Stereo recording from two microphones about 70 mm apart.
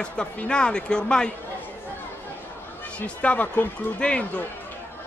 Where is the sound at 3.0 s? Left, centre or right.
Left.